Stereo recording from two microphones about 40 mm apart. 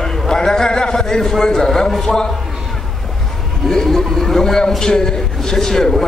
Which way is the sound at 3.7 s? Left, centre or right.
Centre.